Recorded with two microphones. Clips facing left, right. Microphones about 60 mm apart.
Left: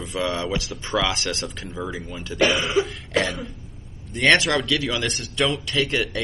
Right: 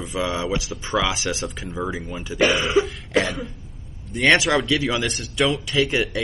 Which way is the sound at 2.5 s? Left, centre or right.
Centre.